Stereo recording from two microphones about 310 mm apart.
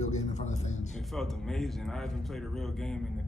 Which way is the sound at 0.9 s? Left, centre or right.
Centre.